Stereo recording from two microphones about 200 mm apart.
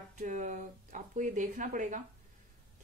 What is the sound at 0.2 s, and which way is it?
A woman's voice, 40° right (ahead or behind).